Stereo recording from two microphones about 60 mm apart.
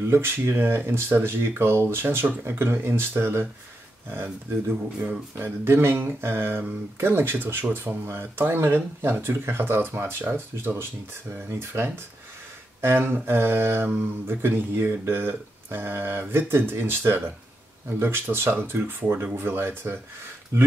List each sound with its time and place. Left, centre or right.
0.1 s speech: right